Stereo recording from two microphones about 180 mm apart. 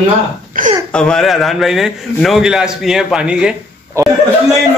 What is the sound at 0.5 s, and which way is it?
Speech, 50° right (ahead or behind).